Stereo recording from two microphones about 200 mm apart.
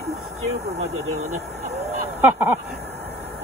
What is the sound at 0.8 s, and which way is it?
Speech, 35° right (ahead or behind).